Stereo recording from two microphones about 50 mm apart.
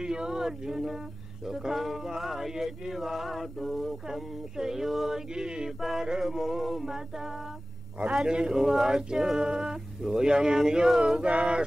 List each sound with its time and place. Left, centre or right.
0.0 s speech: centre
1.4 s chant: centre
4.6 s speech: centre
5.8 s chant: centre
6.0 s speech: centre
8.0 s speech: centre